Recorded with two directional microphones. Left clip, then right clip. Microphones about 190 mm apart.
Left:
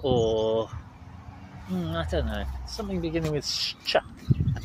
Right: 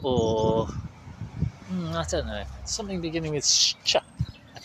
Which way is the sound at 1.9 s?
30° right (ahead or behind).